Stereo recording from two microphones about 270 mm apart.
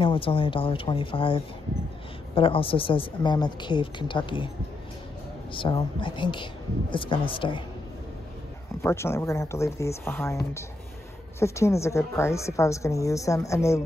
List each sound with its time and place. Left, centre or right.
0.0 s speech: centre
5.5 s speech: centre
8.8 s a woman's voice: centre